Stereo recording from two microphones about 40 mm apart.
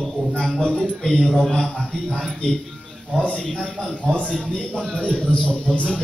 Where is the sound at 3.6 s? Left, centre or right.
Left.